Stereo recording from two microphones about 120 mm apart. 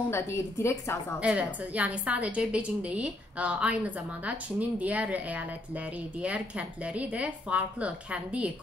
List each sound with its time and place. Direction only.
0.1 s a woman's voice: 20° left (ahead or behind)
1.2 s a woman's voice: 10° right (ahead or behind)